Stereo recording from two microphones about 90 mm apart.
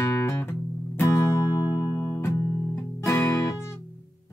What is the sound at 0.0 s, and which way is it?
Music, 35° left (ahead or behind).